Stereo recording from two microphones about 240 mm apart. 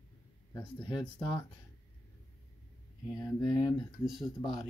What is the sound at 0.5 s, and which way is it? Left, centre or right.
Speech, centre.